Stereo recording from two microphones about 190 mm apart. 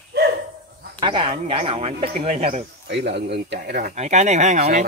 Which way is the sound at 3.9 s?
35° right (ahead or behind).